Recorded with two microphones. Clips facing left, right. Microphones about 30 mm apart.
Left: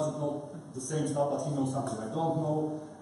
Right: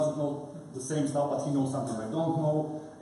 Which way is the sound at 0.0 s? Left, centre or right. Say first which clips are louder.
Right 3 dB; centre.